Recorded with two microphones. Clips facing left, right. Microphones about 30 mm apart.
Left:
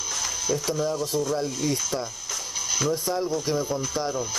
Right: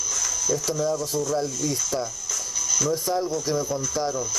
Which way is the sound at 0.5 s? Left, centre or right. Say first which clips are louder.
Right 1 dB; left.